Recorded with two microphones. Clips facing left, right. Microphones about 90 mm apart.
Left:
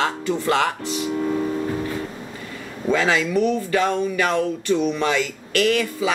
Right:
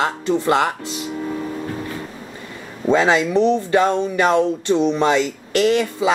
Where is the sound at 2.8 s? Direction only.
25° right (ahead or behind).